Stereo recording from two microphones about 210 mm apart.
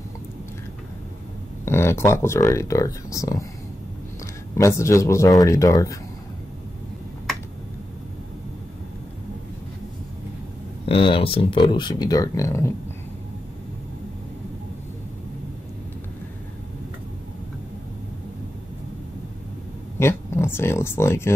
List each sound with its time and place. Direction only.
1.6 s speech: 10° left (ahead or behind)
4.6 s speech: 15° left (ahead or behind)
10.9 s speech: 25° left (ahead or behind)
20.0 s speech: 10° left (ahead or behind)